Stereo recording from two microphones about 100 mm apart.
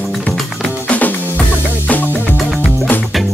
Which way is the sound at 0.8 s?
15° left (ahead or behind).